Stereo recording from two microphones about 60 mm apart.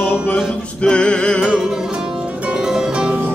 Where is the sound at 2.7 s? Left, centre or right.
Centre.